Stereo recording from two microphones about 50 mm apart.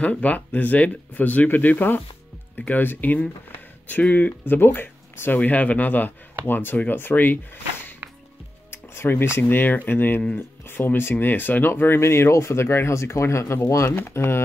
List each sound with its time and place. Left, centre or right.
0.0 s speech: left
5.4 s speech: left
9.0 s speech: left
12.6 s speech: left
13.9 s speech: left